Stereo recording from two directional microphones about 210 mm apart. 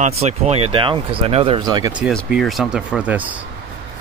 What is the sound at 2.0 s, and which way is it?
Speech, centre (ahead or behind).